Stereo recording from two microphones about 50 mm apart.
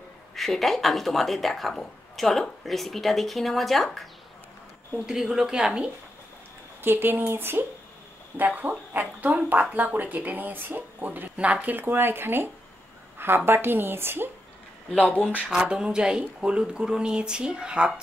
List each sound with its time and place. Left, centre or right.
0.4 s speech: centre
5.0 s speech: centre
6.8 s speech: right
8.5 s speech: right
11.3 s speech: right
11.7 s speech: right
13.5 s speech: right
15.0 s speech: left
15.5 s speech: centre